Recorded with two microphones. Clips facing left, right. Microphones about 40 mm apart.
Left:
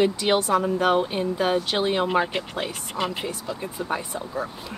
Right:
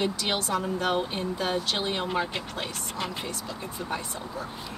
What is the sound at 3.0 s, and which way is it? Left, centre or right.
Speech, left.